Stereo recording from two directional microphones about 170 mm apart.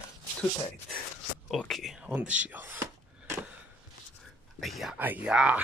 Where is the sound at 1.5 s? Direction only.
Centre (ahead or behind).